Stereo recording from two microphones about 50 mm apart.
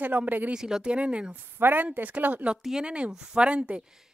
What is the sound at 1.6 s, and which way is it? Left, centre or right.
Speech, right.